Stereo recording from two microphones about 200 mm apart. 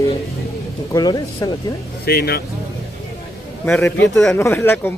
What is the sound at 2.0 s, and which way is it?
Speech, 50° left (ahead or behind).